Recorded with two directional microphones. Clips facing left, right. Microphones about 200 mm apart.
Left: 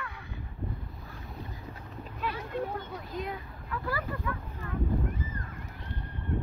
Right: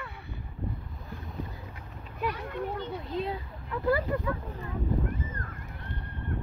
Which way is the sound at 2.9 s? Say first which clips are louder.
Right 4 dB; 30° right (ahead or behind).